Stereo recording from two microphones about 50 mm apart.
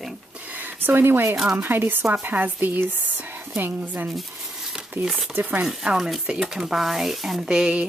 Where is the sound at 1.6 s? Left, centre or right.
Right.